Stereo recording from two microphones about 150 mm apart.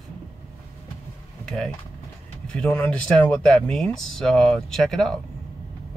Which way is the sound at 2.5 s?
10° left (ahead or behind).